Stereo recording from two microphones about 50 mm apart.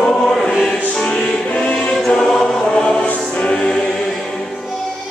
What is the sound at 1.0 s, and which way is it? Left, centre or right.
Music, centre.